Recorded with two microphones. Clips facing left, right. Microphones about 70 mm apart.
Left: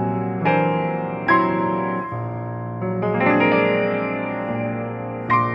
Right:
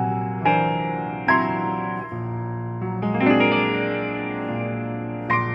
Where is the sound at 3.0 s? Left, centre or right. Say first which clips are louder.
Left 3 dB; left.